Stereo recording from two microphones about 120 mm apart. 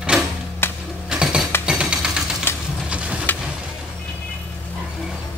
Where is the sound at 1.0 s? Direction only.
10° right (ahead or behind).